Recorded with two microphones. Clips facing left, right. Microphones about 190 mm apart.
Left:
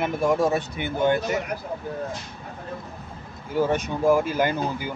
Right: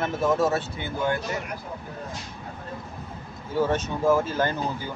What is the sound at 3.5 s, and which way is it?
Speech, 10° left (ahead or behind).